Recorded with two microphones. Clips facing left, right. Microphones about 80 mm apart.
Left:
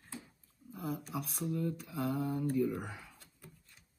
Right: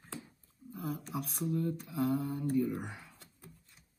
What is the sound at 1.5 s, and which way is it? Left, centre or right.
Speech, right.